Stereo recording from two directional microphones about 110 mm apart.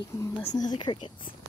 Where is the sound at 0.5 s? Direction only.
40° left (ahead or behind).